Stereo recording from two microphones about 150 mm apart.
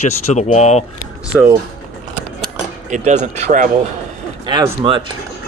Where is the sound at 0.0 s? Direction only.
50° left (ahead or behind).